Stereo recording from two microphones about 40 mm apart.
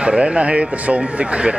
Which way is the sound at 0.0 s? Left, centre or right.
Right.